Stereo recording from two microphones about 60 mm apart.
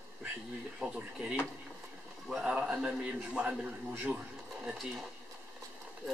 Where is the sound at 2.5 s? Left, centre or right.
Centre.